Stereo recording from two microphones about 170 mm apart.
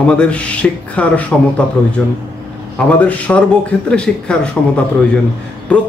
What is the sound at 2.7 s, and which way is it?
A man's voice, 5° left (ahead or behind).